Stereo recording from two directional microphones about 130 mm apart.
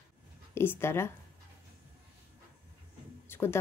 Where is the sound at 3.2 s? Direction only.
20° left (ahead or behind).